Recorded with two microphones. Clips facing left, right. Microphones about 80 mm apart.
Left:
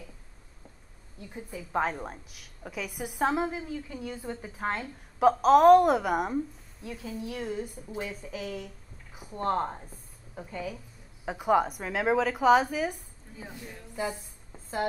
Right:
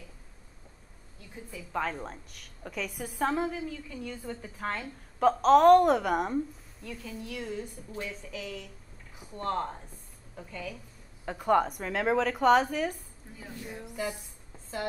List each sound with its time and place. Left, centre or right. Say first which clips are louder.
1.3 s a woman's voice: left 4 dB; left
2.0 s a woman's voice: left 1 dB; centre
3.2 s a woman's voice: left 1 dB; centre
5.2 s a woman's voice: left 1 dB; centre
7.2 s a woman's voice: left 2 dB; left
9.4 s a woman's voice: left 3 dB; left
11.2 s a woman's voice: left 1 dB; centre
13.7 s music: right 4 dB; centre
13.9 s a sound: left 3 dB; centre